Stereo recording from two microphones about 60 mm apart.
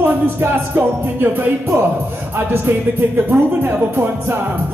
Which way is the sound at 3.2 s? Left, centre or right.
Right.